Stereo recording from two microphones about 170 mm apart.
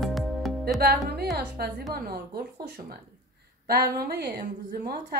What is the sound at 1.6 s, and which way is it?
Speech, 65° right (ahead or behind).